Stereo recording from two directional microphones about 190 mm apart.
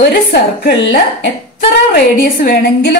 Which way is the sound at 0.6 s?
60° left (ahead or behind).